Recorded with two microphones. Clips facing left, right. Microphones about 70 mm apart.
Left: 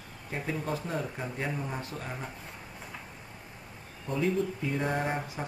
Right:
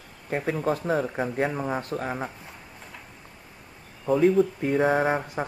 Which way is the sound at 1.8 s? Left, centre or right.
Right.